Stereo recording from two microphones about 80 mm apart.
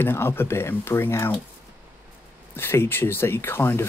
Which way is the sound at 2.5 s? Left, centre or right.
Left.